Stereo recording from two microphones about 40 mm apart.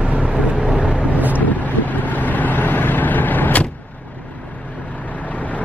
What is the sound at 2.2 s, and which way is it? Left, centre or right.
Vehicle, left.